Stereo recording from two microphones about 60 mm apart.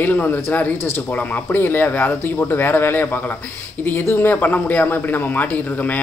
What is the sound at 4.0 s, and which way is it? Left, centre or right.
Speech, left.